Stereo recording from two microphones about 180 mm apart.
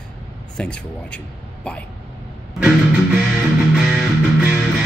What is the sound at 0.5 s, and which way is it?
Speech, 5° left (ahead or behind).